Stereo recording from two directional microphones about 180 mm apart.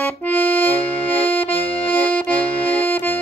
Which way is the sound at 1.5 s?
30° left (ahead or behind).